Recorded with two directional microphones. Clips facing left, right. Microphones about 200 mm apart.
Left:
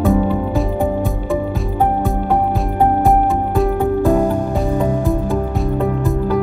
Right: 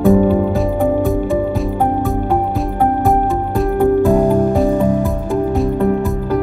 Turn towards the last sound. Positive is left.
turn(degrees=0)  # may be behind; listen again after turning